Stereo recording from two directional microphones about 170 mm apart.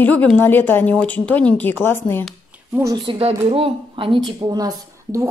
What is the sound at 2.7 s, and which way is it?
Speech, 15° right (ahead or behind).